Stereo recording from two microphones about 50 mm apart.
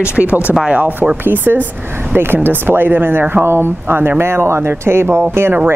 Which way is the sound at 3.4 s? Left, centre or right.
Right.